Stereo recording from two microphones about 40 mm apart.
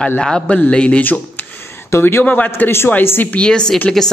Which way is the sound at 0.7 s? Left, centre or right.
Left.